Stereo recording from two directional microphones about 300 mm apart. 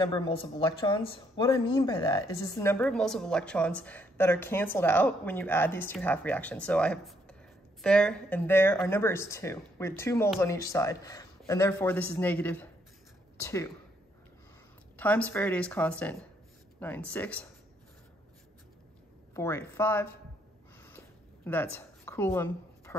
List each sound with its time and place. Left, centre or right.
0.0 s a woman's voice: centre
15.0 s speech: centre
19.3 s a woman's voice: centre
21.5 s a woman's voice: centre